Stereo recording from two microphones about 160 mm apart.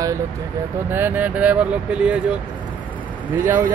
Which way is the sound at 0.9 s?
15° right (ahead or behind).